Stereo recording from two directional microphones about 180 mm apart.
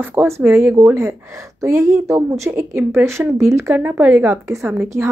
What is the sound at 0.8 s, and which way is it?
Speech, 15° right (ahead or behind).